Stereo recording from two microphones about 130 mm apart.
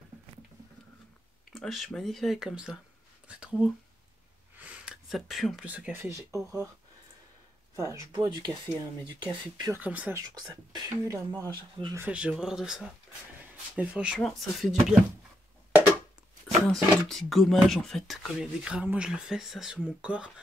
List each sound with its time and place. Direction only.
1.5 s speech: centre (ahead or behind)
4.6 s a sound: 10° right (ahead or behind)
5.7 s speech: 10° right (ahead or behind)
6.1 s speech: 25° right (ahead or behind)
7.7 s speech: 25° right (ahead or behind)
9.7 s speech: 10° right (ahead or behind)
10.1 s speech: 30° right (ahead or behind)
12.1 s speech: 10° right (ahead or behind)
16.6 s speech: centre (ahead or behind)